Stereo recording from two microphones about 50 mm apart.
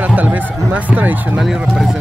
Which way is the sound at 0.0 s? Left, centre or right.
Right.